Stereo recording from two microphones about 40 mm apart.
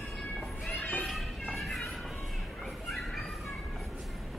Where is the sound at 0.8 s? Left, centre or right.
Left.